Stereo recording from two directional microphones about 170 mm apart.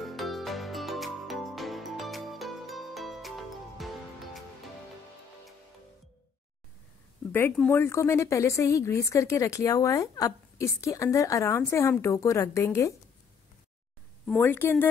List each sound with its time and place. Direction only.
0.0 s music: centre (ahead or behind)
7.7 s speech: 15° left (ahead or behind)
14.2 s speech: 10° left (ahead or behind)